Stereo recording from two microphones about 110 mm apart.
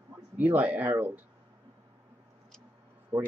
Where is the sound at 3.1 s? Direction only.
35° right (ahead or behind).